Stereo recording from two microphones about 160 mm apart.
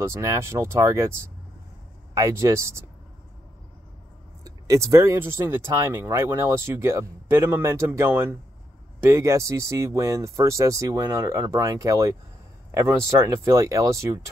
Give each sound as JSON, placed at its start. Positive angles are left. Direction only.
{"t": 0.0, "sound": "speech", "side_deg": -20}
{"t": 2.1, "sound": "speech", "side_deg": -20}
{"t": 4.5, "sound": "speech", "side_deg": -20}